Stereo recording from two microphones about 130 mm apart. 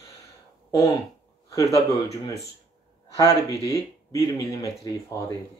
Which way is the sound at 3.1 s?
25° left (ahead or behind).